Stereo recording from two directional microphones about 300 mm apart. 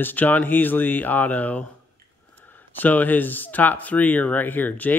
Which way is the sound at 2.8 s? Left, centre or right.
Centre.